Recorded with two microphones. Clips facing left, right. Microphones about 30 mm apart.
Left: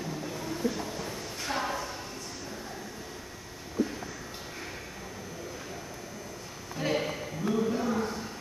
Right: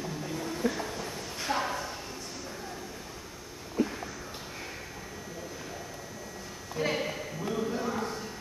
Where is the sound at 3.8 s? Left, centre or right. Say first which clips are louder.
Right 1 dB; centre.